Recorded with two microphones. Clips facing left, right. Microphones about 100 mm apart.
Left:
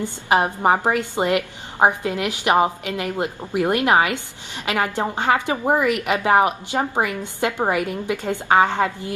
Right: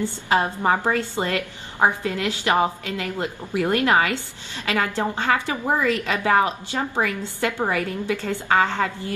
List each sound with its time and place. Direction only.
0.0 s a woman's voice: 20° left (ahead or behind)